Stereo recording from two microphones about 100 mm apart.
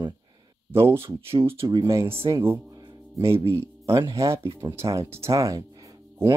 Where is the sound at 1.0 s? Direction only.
60° right (ahead or behind).